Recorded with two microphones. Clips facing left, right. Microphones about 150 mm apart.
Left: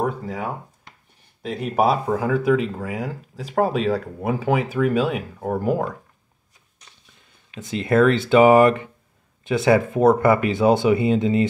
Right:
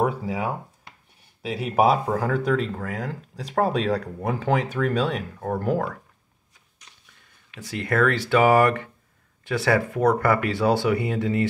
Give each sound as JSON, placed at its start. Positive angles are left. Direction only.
{"t": 0.0, "sound": "a sound", "side_deg": -10}
{"t": 1.4, "sound": "speech", "side_deg": -5}
{"t": 7.5, "sound": "speech", "side_deg": 20}